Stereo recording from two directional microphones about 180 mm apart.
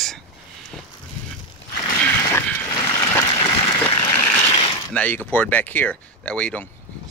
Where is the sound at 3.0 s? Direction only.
30° left (ahead or behind).